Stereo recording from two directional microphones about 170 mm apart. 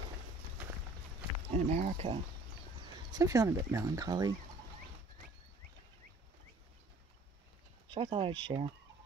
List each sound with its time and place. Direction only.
1.5 s speech: 45° right (ahead or behind)
3.1 s speech: 20° right (ahead or behind)
7.9 s speech: 30° right (ahead or behind)